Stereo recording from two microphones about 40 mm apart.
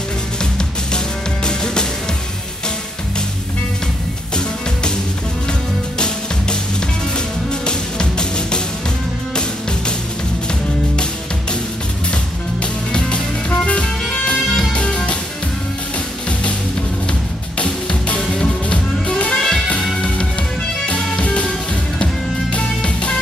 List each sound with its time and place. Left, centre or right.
0.4 s music: centre
5.5 s music: left
13.1 s music: left
17.6 s music: left
20.8 s music: left